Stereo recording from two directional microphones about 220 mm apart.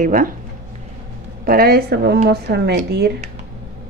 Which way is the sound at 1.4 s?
45° right (ahead or behind).